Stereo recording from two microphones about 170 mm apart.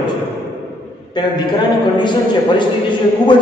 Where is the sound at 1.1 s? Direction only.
25° left (ahead or behind).